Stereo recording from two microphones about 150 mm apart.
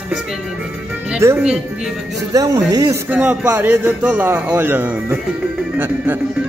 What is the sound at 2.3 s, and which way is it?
Speech, 25° right (ahead or behind).